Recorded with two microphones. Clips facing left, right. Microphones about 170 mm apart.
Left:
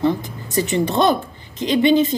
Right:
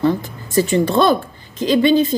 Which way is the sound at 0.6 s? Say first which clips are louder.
Right 3 dB; 20° left (ahead or behind).